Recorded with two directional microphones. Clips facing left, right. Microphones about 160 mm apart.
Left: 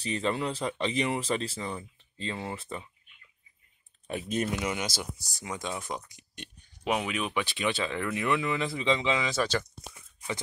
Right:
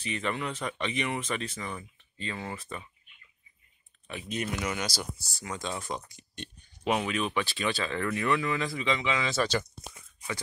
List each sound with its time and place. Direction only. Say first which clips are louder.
0.0 s speech: left 3 dB; 35° left (ahead or behind)
4.1 s speech: left 4 dB; 45° left (ahead or behind)
4.5 s speech: left 1 dB; 20° left (ahead or behind)
9.2 s speech: even; 10° left (ahead or behind)